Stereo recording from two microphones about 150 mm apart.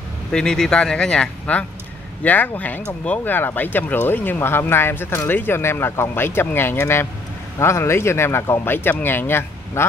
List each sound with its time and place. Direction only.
0.3 s speech: 5° left (ahead or behind)